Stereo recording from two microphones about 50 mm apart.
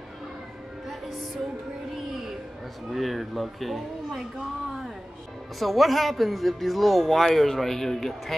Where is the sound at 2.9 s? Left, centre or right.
Centre.